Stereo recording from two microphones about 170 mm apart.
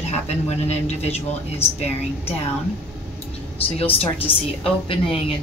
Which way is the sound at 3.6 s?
35° left (ahead or behind).